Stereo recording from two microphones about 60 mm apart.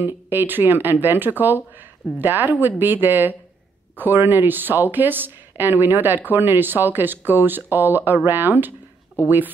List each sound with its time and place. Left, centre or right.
0.0 s speech: right